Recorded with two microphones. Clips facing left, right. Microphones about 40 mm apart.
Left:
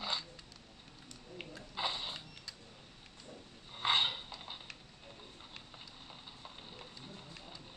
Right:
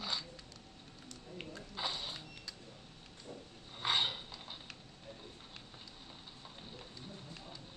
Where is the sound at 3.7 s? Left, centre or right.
Centre.